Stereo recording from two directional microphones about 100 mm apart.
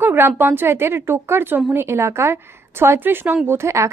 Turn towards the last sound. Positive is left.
turn(degrees=-30)  # may be behind; listen again after turning